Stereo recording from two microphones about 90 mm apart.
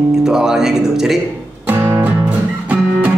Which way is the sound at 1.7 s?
25° right (ahead or behind).